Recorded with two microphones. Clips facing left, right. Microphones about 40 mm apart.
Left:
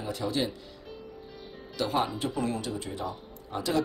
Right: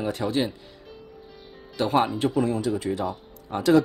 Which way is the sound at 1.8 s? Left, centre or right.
Right.